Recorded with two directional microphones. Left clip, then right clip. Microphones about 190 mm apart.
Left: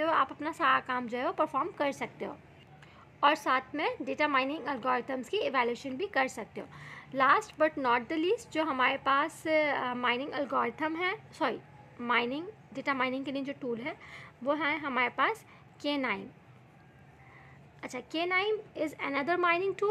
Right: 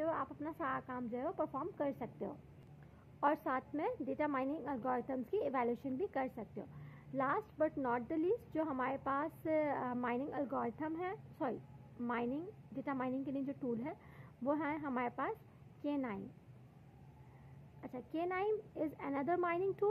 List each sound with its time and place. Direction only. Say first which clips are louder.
0.0 s a woman's voice: left 11 dB; 10° left (ahead or behind)
17.7 s a woman's voice: left 8 dB; 10° left (ahead or behind)
18.1 s a woman's voice: left 8 dB; centre (ahead or behind)